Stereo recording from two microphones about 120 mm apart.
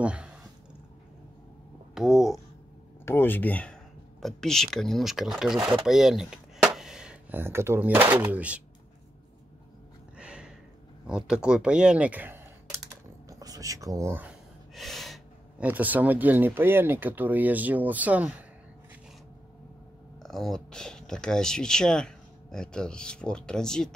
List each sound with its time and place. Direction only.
0.0 s speech: 10° right (ahead or behind)
2.0 s a sound: 5° right (ahead or behind)
3.1 s speech: 15° left (ahead or behind); by 8.6 s 10° right (ahead or behind)
10.1 s a sound: 10° right (ahead or behind)
11.1 s speech: 5° right (ahead or behind)
13.3 s speech: 30° right (ahead or behind)
14.7 s gasp: centre (ahead or behind)
15.6 s speech: 15° right (ahead or behind)
20.2 s speech: centre (ahead or behind)